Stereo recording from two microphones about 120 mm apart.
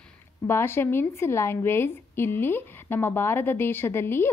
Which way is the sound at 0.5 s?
20° left (ahead or behind).